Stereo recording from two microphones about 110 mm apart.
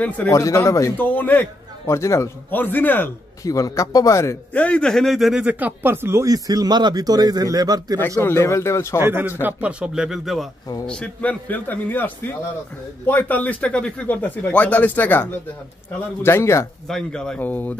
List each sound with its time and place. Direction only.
0.3 s speech: 30° left (ahead or behind)
0.9 s speech: 15° left (ahead or behind)
3.4 s speech: 30° left (ahead or behind)
4.6 s a man's voice: 10° left (ahead or behind); by 8.0 s 35° right (ahead or behind)
8.2 s speech: 25° left (ahead or behind)
9.0 s a man's voice: 20° right (ahead or behind); by 10.5 s centre (ahead or behind)
10.9 s speech: 10° left (ahead or behind)
16.8 s speech: 5° left (ahead or behind)